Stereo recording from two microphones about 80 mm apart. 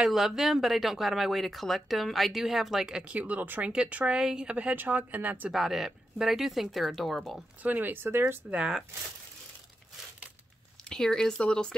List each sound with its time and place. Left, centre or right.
0.0 s a woman's voice: centre; by 5.5 s right
5.5 s speech: centre
7.6 s a woman's voice: right
8.5 s speech: centre
10.8 s speech: centre